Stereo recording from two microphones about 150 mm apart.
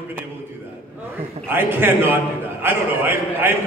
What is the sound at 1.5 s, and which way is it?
A man's voice, 15° right (ahead or behind).